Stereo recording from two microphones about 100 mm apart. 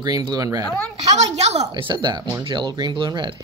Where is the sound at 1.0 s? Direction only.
90° right.